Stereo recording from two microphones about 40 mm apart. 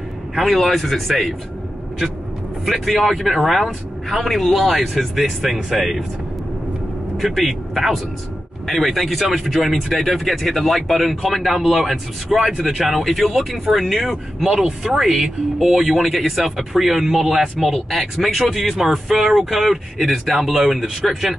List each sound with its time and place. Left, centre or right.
0.4 s speech: centre
2.6 s speech: centre
3.3 s speech: centre
7.3 s speech: centre
14.4 s speech: centre